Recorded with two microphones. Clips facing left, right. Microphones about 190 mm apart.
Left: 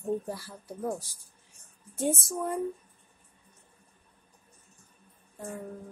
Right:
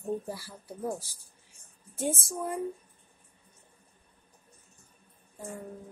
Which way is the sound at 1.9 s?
5° right (ahead or behind).